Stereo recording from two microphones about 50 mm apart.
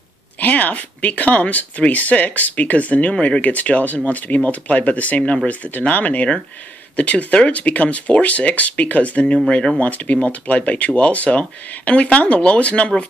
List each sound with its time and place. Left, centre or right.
0.4 s speech: left